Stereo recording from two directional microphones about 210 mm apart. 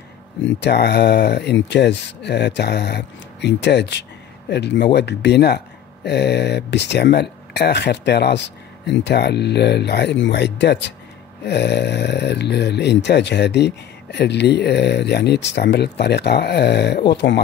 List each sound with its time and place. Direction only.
0.6 s speech: 50° left (ahead or behind)